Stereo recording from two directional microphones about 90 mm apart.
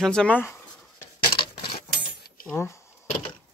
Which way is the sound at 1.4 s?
65° left (ahead or behind).